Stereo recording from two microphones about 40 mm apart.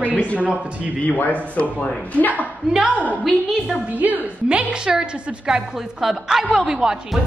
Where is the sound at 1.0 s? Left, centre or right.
Left.